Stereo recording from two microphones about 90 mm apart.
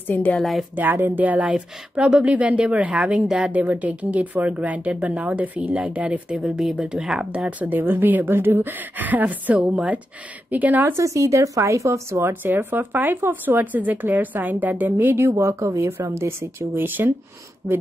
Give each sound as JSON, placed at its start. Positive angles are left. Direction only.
{"t": 0.0, "sound": "speech", "side_deg": 20}
{"t": 0.4, "sound": "speech", "side_deg": 0}
{"t": 0.7, "sound": "speech", "side_deg": -20}
{"t": 11.0, "sound": "speech", "side_deg": -35}